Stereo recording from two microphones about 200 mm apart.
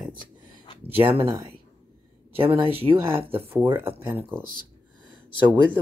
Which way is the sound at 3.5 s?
10° right (ahead or behind).